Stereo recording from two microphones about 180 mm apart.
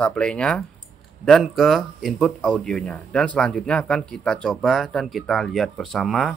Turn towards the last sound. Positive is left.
turn(degrees=0)  # may be behind; listen again after turning